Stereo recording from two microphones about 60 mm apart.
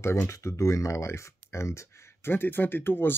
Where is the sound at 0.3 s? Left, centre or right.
Left.